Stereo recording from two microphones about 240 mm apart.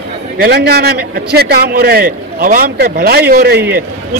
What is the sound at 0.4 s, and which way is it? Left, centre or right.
A man's voice, right.